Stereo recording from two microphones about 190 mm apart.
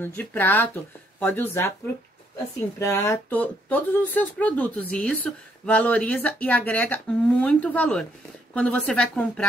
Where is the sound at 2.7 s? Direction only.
15° left (ahead or behind).